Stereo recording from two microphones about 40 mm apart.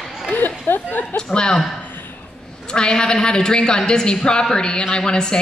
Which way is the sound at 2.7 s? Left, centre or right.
Left.